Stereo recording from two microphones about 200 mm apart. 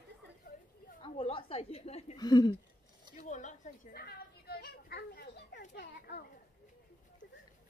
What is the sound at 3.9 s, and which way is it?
Children playing, 50° left (ahead or behind).